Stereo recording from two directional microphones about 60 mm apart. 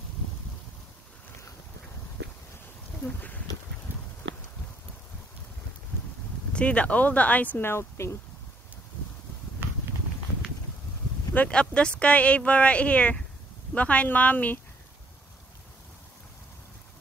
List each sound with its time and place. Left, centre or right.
3.0 s speech: left
6.5 s speech: left
7.6 s speech: left
11.3 s speech: left